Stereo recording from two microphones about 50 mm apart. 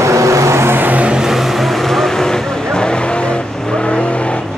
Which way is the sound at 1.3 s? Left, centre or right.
Centre.